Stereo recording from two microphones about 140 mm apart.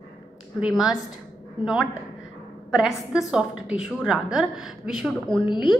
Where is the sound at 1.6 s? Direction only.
5° right (ahead or behind).